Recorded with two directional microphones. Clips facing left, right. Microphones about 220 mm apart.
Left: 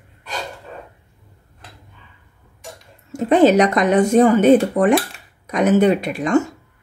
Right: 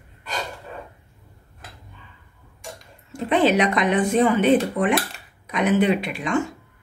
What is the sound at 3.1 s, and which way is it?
Speech, 45° left (ahead or behind).